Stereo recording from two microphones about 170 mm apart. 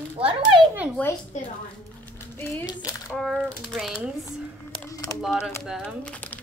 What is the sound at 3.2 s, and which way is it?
Speech, centre (ahead or behind).